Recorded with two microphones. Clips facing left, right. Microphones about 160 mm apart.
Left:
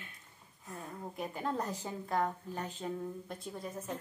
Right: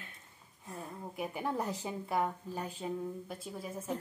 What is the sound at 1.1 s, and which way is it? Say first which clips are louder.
A woman's voice: right 1 dB; 10° right (ahead or behind).